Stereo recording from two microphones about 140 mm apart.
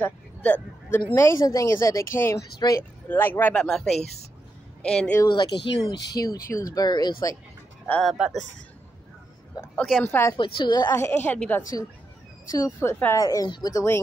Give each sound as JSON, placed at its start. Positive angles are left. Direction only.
{"t": 0.0, "sound": "a woman's voice", "side_deg": 10}
{"t": 3.6, "sound": "a woman's voice", "side_deg": 0}
{"t": 5.3, "sound": "a woman's voice", "side_deg": 35}
{"t": 8.0, "sound": "speech", "side_deg": 0}
{"t": 9.8, "sound": "speech", "side_deg": 0}
{"t": 10.0, "sound": "a woman's voice", "side_deg": 15}
{"t": 10.3, "sound": "speech", "side_deg": 35}
{"t": 11.0, "sound": "a woman's voice", "side_deg": 15}
{"t": 12.4, "sound": "a woman's voice", "side_deg": 25}